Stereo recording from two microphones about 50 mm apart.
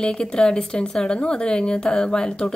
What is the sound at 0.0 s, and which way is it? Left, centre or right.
Speech, centre.